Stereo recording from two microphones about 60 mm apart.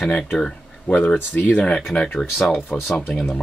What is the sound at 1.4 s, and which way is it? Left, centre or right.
Speech, centre.